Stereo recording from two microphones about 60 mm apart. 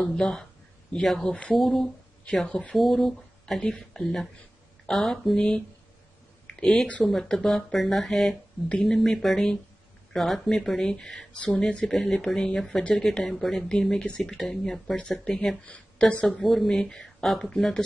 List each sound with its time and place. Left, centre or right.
0.0 s speech: centre
2.2 s speech: centre
2.7 s speech: centre
8.6 s speech: centre
11.9 s speech: centre
15.6 s speech: left
16.3 s speech: centre